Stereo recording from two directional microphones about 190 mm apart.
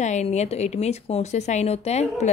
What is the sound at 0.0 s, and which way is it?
A woman's voice, 35° left (ahead or behind).